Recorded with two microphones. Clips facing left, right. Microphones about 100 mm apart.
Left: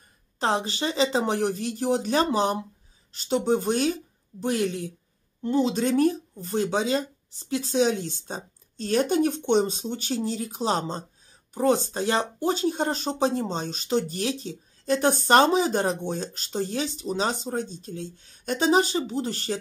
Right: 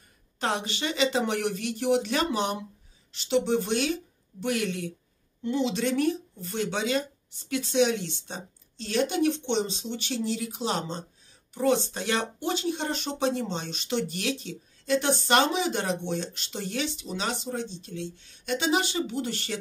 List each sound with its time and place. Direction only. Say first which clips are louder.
0.4 s speech: left 4 dB; 35° left (ahead or behind)